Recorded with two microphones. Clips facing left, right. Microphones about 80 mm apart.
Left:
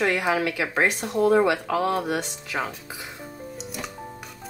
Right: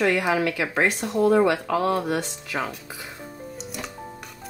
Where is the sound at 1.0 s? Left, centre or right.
Centre.